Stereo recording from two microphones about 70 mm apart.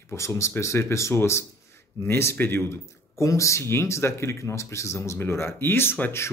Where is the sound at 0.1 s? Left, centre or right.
Left.